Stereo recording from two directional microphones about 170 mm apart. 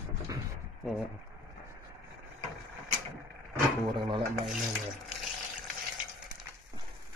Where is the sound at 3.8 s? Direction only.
25° right (ahead or behind).